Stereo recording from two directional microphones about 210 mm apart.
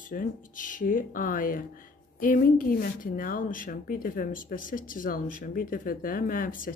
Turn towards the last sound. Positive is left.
turn(degrees=40)  # may be behind; listen again after turning